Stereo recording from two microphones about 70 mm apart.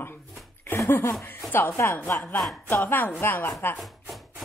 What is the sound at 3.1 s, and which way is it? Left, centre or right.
Speech, left.